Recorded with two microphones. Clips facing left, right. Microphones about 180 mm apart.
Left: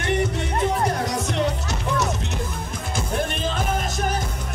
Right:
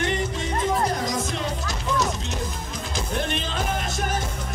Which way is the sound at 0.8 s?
65° left (ahead or behind).